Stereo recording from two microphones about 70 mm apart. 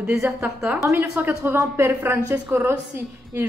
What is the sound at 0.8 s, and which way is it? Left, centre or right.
A woman's voice, right.